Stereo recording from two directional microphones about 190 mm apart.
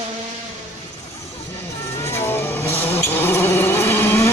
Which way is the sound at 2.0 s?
10° left (ahead or behind).